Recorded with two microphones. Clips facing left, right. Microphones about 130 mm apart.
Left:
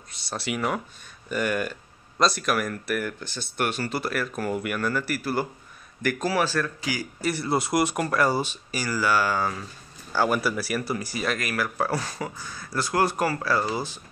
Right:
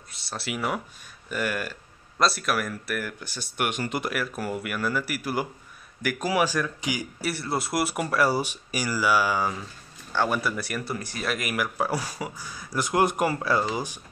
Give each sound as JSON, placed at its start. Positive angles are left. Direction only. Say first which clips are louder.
{"t": 0.1, "sound": "speech", "louder": "left 3 dB", "side_deg": 0}
{"t": 7.2, "sound": "speech", "louder": "left 4 dB", "side_deg": 0}
{"t": 10.1, "sound": "speech", "louder": "left 2 dB", "side_deg": 5}
{"t": 11.3, "sound": "speech", "louder": "even", "side_deg": -15}